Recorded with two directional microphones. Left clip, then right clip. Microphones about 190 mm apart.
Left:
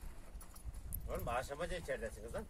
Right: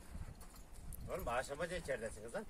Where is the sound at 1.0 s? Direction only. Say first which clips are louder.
Even; centre (ahead or behind).